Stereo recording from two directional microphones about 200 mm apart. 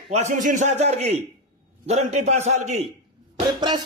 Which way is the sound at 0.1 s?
35° right (ahead or behind).